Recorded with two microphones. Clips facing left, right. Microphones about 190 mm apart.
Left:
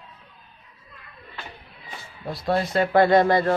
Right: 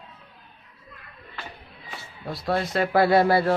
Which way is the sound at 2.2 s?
Centre (ahead or behind).